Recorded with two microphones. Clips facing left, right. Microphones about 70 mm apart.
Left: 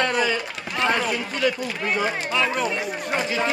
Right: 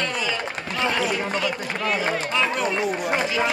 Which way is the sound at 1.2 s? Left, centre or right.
Right.